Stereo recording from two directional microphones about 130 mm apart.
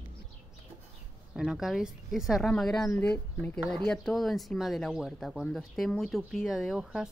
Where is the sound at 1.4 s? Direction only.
Centre (ahead or behind).